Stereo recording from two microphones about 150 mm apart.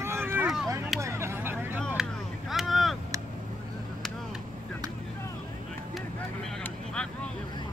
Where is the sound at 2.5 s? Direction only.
Centre (ahead or behind).